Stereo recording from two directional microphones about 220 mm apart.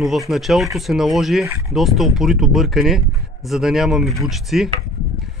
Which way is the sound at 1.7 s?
Centre (ahead or behind).